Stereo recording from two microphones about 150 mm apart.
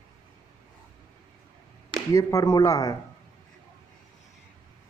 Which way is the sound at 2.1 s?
20° left (ahead or behind).